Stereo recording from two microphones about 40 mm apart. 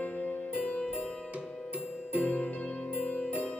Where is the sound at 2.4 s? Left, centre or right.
Left.